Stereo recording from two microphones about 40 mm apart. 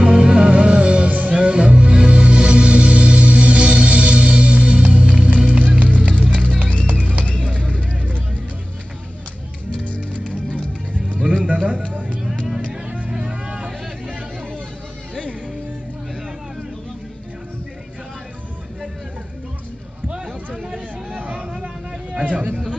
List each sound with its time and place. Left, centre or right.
0.0 s music: right
10.2 s music: right
13.2 s music: right
20.1 s a sound: right
21.3 s hubbub: right
22.2 s a sound: right